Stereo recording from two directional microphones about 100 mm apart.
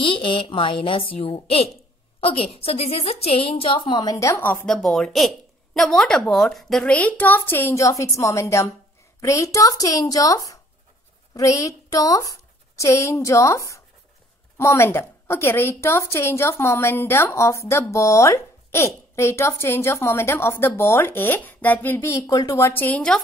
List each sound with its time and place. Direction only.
0.0 s a woman's voice: 55° left (ahead or behind); by 4.3 s 40° left (ahead or behind)
4.3 s a woman's voice: 20° left (ahead or behind)
4.6 s a woman's voice: 5° left (ahead or behind); by 7.8 s 20° left (ahead or behind)
7.8 s a woman's voice: 30° left (ahead or behind)
22.1 s a woman's voice: 35° left (ahead or behind); by 23.1 s 15° left (ahead or behind)